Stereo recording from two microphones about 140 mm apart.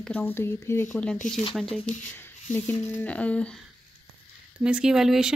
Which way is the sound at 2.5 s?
10° left (ahead or behind).